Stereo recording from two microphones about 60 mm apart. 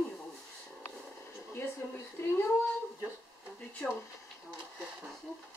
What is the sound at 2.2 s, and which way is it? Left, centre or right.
Speech, left.